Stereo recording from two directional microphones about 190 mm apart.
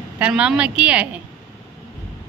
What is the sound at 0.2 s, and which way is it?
A woman's voice, 5° right (ahead or behind).